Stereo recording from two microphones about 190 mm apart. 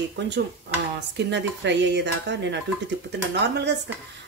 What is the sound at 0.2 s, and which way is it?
Speech, 70° right (ahead or behind).